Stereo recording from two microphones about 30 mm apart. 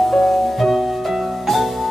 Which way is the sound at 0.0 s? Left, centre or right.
Centre.